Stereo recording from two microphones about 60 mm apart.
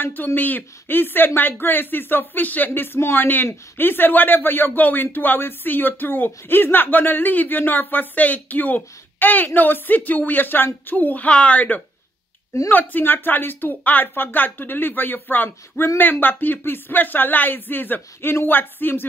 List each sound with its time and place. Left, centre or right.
0.0 s speech: left